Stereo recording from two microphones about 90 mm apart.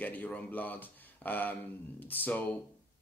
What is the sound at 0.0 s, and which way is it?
Speech, 20° left (ahead or behind).